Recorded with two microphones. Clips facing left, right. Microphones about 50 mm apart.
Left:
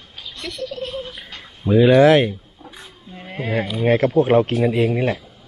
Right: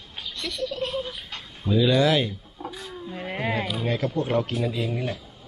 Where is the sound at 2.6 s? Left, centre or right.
Centre.